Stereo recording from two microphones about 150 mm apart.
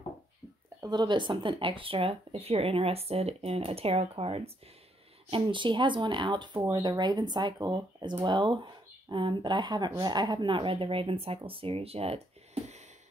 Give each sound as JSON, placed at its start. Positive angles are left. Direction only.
{"t": 0.7, "sound": "speech", "side_deg": -30}